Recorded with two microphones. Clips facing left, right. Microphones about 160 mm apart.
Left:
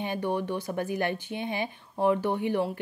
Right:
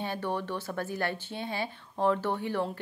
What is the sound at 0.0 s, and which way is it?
Speech, 15° left (ahead or behind).